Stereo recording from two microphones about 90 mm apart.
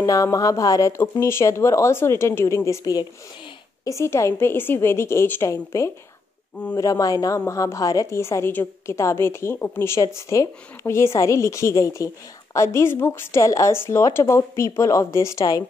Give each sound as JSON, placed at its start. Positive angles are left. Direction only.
{"t": 0.0, "sound": "a woman's voice", "side_deg": 40}
{"t": 2.8, "sound": "a woman's voice", "side_deg": 45}
{"t": 3.8, "sound": "a woman's voice", "side_deg": 35}